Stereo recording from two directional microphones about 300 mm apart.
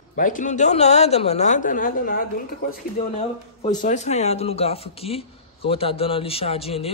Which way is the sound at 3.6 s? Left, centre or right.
Left.